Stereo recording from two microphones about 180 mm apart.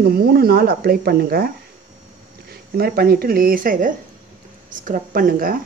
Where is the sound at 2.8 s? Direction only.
55° right (ahead or behind).